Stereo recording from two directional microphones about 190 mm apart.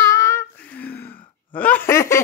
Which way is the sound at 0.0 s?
15° left (ahead or behind).